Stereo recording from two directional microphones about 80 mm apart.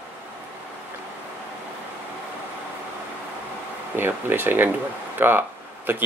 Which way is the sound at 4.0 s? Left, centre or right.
Right.